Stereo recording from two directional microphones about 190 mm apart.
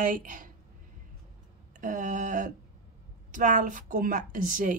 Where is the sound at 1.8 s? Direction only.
40° right (ahead or behind).